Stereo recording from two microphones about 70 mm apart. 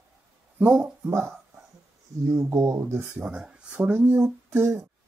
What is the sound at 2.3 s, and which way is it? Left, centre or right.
Speech, right.